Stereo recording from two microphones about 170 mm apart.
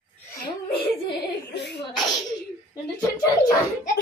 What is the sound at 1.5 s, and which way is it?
Speech, 90° left.